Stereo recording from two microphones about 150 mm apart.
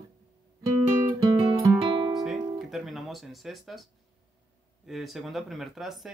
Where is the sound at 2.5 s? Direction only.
Centre (ahead or behind).